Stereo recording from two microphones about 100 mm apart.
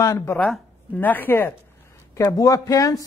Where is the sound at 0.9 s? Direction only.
15° left (ahead or behind).